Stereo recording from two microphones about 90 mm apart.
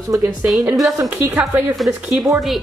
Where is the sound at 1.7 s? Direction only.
Centre (ahead or behind).